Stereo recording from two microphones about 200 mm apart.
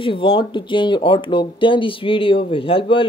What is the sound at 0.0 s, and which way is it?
Speech, 25° left (ahead or behind).